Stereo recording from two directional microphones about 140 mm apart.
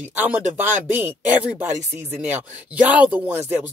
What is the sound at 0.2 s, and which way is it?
Speech, 10° right (ahead or behind).